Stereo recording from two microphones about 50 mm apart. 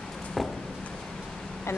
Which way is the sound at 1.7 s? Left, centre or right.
Left.